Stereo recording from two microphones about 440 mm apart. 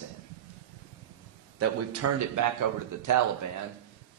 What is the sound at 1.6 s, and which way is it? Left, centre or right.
A man's voice, right.